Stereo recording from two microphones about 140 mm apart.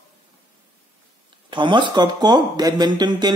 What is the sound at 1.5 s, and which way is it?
Speech, 35° right (ahead or behind).